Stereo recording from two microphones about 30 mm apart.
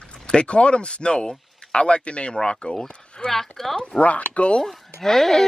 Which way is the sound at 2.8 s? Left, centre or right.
Centre.